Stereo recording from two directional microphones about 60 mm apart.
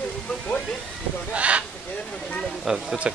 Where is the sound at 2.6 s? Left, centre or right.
Centre.